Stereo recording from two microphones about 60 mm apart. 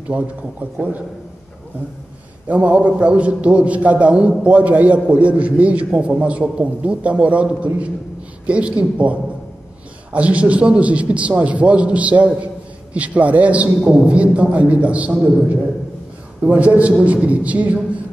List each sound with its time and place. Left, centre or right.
0.1 s a man's voice: right
2.4 s a man's voice: right